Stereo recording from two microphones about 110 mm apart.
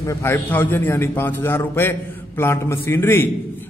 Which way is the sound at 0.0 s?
25° left (ahead or behind).